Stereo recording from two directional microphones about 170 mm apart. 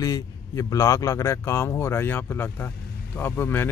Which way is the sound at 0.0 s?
20° left (ahead or behind).